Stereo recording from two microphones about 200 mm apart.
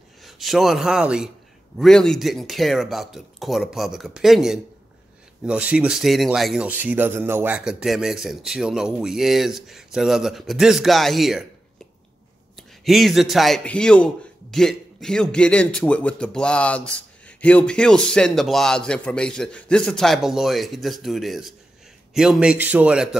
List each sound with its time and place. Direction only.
0.2 s a man's voice: centre (ahead or behind)
12.5 s a man's voice: centre (ahead or behind)